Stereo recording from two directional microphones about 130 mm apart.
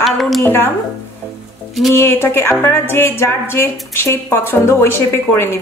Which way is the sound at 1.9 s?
20° left (ahead or behind).